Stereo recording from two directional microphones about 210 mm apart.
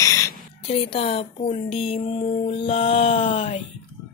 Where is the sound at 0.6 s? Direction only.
25° left (ahead or behind).